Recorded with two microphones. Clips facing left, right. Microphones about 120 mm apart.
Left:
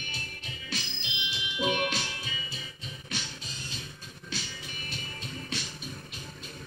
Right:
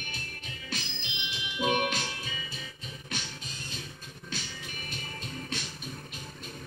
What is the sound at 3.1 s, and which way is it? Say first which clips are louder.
Music: even; 50° right (ahead or behind).